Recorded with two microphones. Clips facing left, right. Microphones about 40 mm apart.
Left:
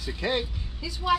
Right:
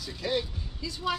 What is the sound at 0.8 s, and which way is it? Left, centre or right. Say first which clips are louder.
Speech: left 6 dB; centre.